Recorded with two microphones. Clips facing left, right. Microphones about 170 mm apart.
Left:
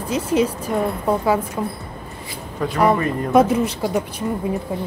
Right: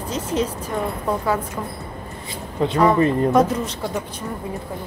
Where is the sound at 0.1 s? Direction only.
10° left (ahead or behind).